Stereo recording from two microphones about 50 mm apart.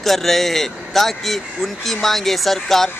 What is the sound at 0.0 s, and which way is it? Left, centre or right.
Speech, centre.